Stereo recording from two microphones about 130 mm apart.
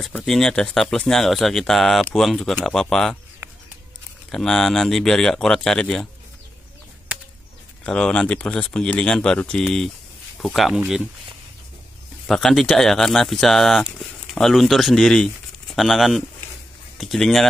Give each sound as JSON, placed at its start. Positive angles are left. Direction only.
{"t": 0.2, "sound": "speech", "side_deg": 5}
{"t": 4.3, "sound": "speech", "side_deg": 5}
{"t": 7.8, "sound": "speech", "side_deg": 5}
{"t": 12.3, "sound": "speech", "side_deg": 0}